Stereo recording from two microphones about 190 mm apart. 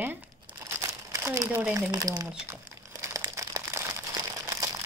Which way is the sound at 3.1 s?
20° right (ahead or behind).